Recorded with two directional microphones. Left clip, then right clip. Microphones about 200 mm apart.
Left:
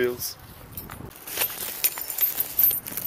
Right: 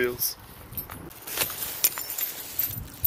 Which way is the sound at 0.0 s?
20° left (ahead or behind).